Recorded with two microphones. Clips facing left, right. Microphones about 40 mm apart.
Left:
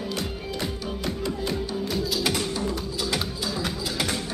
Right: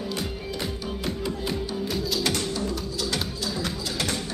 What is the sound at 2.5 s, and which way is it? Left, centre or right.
Music, left.